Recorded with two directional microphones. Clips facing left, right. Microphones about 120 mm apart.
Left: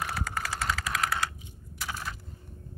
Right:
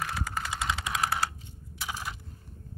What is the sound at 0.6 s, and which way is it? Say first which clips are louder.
Vehicle: even; 20° right (ahead or behind).